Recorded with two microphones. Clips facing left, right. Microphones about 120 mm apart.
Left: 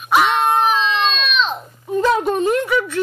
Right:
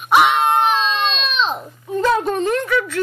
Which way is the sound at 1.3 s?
30° right (ahead or behind).